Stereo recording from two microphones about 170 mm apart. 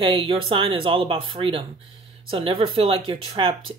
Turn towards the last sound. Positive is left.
turn(degrees=-35)  # may be behind; listen again after turning